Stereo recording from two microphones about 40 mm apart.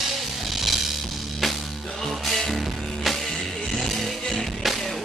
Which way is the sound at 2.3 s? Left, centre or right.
Centre.